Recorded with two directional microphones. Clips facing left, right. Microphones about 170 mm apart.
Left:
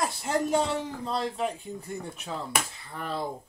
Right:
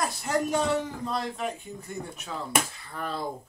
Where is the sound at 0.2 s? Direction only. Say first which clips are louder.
Left 1 dB; 25° left (ahead or behind).